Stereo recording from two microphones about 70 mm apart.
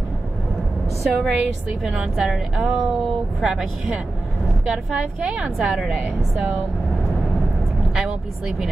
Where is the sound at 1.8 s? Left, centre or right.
Centre.